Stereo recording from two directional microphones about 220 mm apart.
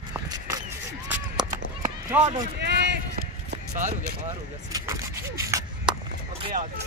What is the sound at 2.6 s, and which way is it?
Run, 50° right (ahead or behind).